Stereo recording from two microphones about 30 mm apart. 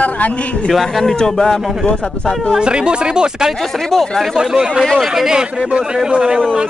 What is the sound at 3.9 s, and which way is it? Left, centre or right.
Speech, centre.